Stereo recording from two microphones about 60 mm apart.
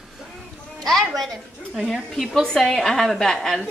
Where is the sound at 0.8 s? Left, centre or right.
Centre.